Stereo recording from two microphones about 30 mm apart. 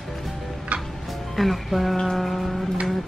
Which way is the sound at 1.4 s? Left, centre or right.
Centre.